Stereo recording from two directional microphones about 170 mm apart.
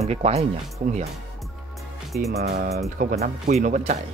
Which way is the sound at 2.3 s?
70° right (ahead or behind).